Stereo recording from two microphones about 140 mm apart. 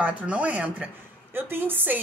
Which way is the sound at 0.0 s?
10° right (ahead or behind).